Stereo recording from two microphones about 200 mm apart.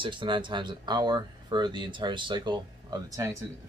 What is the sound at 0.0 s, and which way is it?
Speech, 25° right (ahead or behind).